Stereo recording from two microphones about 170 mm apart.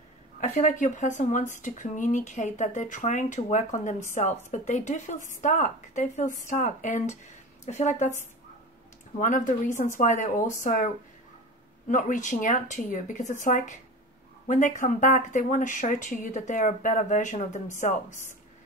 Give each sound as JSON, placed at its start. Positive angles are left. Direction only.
{"t": 0.4, "sound": "speech", "side_deg": 45}
{"t": 9.2, "sound": "speech", "side_deg": 50}
{"t": 11.9, "sound": "speech", "side_deg": 50}